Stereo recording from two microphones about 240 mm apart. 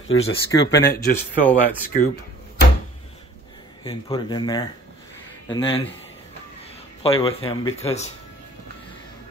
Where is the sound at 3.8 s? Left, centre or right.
Centre.